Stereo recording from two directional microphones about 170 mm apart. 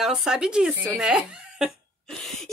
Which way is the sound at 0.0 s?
Centre (ahead or behind).